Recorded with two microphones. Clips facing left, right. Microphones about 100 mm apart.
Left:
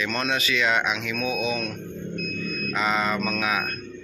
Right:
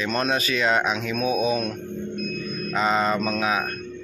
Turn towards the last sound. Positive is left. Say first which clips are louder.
# right 2 dB
turn(degrees=-30)  # may be behind; listen again after turning